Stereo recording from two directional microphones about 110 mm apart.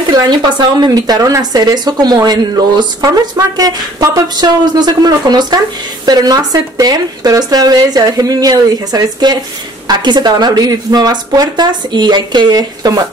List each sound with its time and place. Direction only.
0.1 s speech: 40° right (ahead or behind)